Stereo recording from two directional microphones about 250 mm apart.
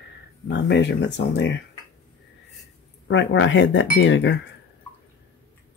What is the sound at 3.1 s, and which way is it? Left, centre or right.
Speech, left.